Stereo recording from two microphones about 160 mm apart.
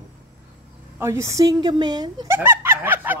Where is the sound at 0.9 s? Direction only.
15° right (ahead or behind).